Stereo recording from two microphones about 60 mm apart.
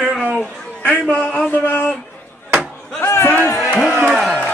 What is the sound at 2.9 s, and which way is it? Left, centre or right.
Speech, left.